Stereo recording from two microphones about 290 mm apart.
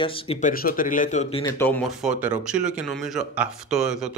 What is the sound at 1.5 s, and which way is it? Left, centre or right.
Speech, centre.